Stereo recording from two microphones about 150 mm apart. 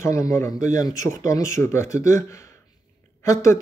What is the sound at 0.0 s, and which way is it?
Speech, 20° left (ahead or behind).